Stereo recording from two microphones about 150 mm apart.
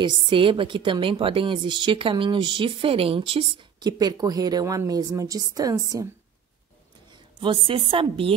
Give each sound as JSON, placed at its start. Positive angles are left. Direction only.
{"t": 0.0, "sound": "a woman's voice", "side_deg": -30}
{"t": 7.3, "sound": "a woman's voice", "side_deg": -35}